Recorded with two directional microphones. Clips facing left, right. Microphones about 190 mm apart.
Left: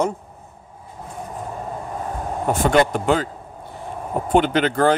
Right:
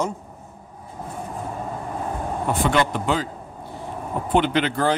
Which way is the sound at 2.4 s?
45° left (ahead or behind).